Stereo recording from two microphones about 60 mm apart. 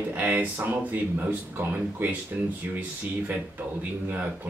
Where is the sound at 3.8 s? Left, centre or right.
Right.